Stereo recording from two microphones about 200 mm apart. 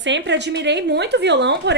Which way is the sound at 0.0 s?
60° right (ahead or behind).